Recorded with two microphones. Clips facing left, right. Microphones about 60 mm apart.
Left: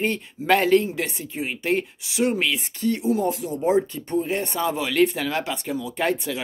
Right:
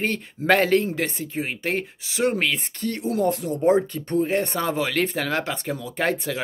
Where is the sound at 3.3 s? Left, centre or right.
Right.